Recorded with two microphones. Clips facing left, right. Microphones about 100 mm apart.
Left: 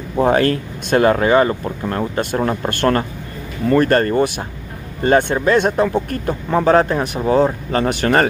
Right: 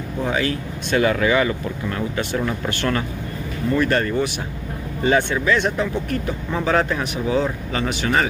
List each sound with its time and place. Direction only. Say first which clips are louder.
0.2 s speech: left 8 dB; 60° left (ahead or behind)